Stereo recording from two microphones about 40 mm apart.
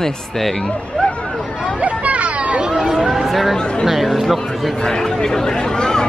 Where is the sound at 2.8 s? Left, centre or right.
Centre.